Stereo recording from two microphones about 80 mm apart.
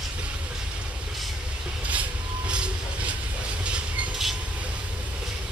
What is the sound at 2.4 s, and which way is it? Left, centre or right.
Train, centre.